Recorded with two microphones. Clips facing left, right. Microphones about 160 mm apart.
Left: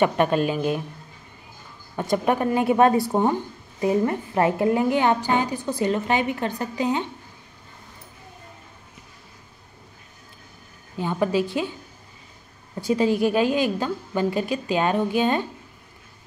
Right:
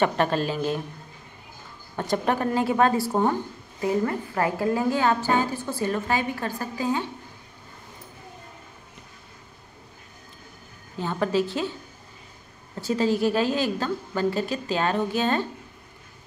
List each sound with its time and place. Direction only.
0.0 s a woman's voice: 15° left (ahead or behind)
2.0 s a woman's voice: 10° left (ahead or behind)
11.0 s a woman's voice: 15° left (ahead or behind)
12.8 s a woman's voice: 15° left (ahead or behind)